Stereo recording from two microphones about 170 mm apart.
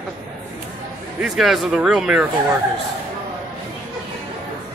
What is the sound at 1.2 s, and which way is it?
Speech, centre (ahead or behind).